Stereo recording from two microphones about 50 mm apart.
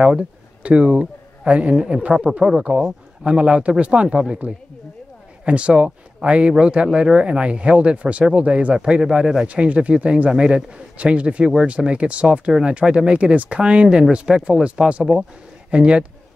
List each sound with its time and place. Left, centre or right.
0.7 s a man's voice: right
9.5 s a man's voice: right